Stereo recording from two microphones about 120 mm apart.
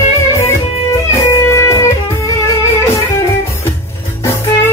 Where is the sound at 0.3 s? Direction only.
25° left (ahead or behind).